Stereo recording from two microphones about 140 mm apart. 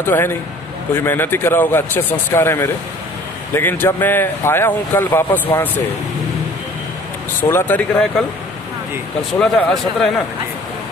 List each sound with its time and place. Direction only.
0.0 s speech: 15° left (ahead or behind)
7.4 s speech: 15° left (ahead or behind)
9.4 s speech: 5° left (ahead or behind)